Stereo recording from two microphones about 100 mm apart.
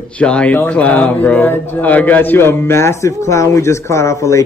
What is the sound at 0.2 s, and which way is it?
A man's voice, 10° left (ahead or behind).